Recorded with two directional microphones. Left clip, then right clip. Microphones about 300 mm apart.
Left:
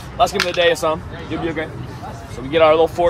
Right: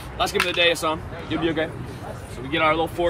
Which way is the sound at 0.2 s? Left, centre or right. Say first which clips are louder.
Left 5 dB; centre.